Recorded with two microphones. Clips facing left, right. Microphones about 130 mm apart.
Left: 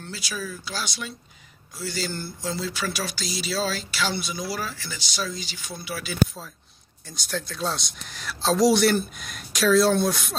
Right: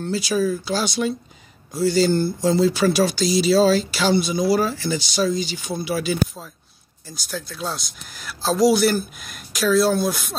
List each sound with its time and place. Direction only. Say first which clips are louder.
0.0 s speech: right 13 dB; 30° right (ahead or behind)
7.1 s speech: even; 5° right (ahead or behind)